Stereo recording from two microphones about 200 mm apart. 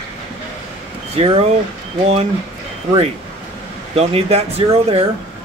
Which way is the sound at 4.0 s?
30° right (ahead or behind).